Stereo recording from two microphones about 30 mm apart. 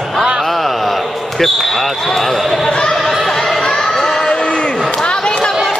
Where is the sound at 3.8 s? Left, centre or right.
Centre.